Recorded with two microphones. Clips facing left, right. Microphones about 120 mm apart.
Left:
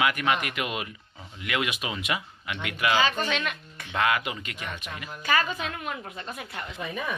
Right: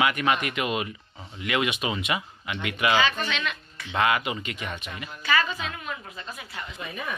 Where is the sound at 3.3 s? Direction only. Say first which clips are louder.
Left 1 dB; 50° left (ahead or behind).